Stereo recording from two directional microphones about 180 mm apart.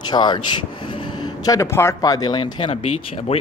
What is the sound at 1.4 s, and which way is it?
Speech, 20° left (ahead or behind).